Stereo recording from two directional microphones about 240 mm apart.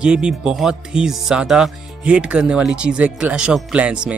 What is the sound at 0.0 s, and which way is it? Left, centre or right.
Speech, centre.